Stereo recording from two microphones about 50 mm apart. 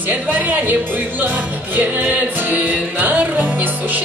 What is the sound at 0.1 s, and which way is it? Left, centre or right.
Music, right.